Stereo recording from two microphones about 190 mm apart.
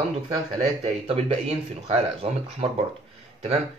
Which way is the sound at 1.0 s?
30° right (ahead or behind).